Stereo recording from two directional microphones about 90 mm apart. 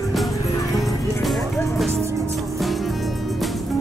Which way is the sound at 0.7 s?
Centre (ahead or behind).